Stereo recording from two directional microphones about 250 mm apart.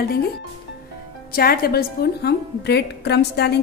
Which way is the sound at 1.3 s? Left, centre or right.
Left.